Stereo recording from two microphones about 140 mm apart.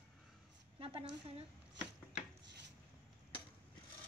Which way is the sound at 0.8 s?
40° right (ahead or behind).